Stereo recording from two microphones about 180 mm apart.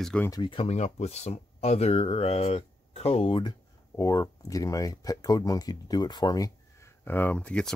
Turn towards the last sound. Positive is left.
turn(degrees=5)  # may be behind; listen again after turning